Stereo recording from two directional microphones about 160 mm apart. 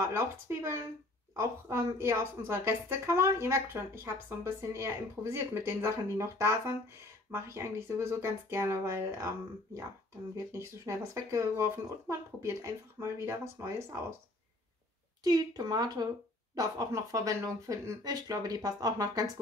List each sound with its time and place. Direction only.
0.0 s speech: 15° right (ahead or behind)
10.3 s speech: 15° right (ahead or behind)
15.2 s speech: 25° right (ahead or behind)